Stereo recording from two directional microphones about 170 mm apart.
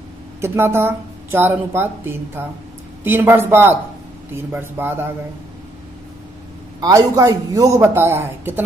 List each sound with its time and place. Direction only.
0.4 s a woman's voice: 15° right (ahead or behind)
6.8 s a woman's voice: 20° right (ahead or behind)